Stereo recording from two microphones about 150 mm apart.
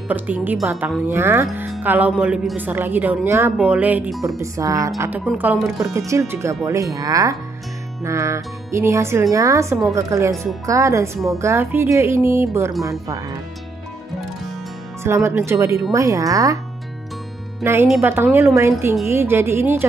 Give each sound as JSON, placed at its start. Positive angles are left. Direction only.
{"t": 0.1, "sound": "speech", "side_deg": -10}
{"t": 4.4, "sound": "speech", "side_deg": -20}
{"t": 5.9, "sound": "speech", "side_deg": -20}
{"t": 15.0, "sound": "speech", "side_deg": -15}
{"t": 17.9, "sound": "speech", "side_deg": -15}